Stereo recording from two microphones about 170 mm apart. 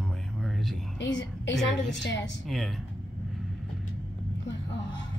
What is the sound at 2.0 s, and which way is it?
Speech, 90° left.